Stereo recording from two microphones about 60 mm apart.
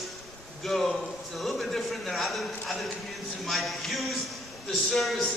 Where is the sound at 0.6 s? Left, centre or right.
Centre.